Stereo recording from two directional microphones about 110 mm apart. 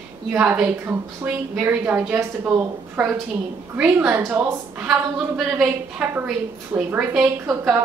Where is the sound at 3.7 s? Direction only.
10° right (ahead or behind).